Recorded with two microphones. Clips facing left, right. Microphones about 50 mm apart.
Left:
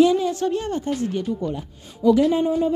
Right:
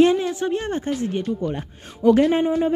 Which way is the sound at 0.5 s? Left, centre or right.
Right.